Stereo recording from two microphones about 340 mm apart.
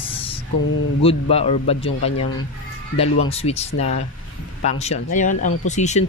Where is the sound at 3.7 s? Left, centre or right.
Left.